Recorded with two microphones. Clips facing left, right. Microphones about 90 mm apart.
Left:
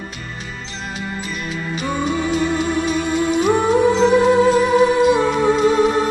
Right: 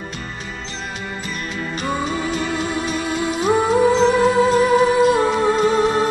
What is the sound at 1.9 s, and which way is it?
Music, 5° right (ahead or behind).